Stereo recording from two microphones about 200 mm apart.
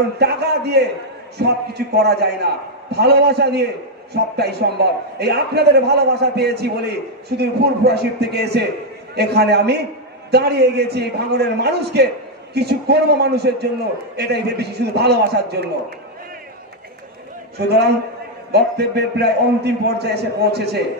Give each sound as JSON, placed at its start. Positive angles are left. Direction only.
{"t": 0.2, "sound": "a man's voice", "side_deg": -55}
{"t": 17.6, "sound": "a man's voice", "side_deg": -55}